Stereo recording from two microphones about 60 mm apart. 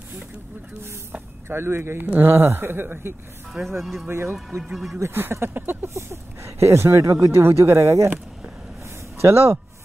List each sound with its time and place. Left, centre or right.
1.5 s speech: right
3.6 s speech: right
4.1 s speech: right
5.9 s speech: right
9.2 s speech: right